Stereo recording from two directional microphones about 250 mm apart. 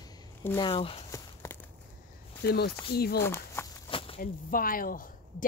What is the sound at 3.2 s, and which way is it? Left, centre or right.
Speech, centre.